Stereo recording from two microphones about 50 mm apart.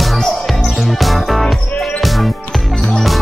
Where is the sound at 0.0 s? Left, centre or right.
Centre.